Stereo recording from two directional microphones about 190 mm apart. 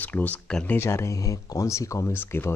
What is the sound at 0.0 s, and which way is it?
Speech, 10° left (ahead or behind).